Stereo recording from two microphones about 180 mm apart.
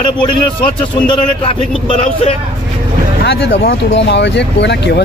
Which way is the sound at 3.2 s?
60° left (ahead or behind).